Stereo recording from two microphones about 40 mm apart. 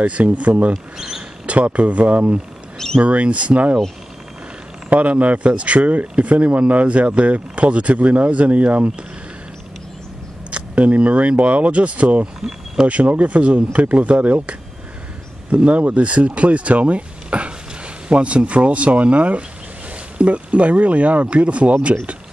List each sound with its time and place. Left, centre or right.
0.0 s speech: right
0.9 s speech: centre
1.4 s speech: right
4.8 s speech: right
10.5 s speech: right
12.4 s a sound: centre
12.8 s speech: right